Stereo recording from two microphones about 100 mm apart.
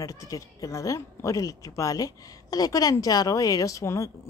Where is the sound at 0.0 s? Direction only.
35° left (ahead or behind).